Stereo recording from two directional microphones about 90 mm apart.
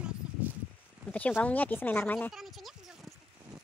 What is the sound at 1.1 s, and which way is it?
Speech, 15° left (ahead or behind).